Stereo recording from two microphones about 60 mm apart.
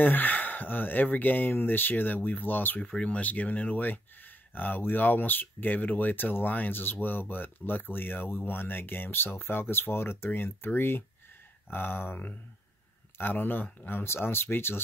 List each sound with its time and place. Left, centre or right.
0.0 s speech: left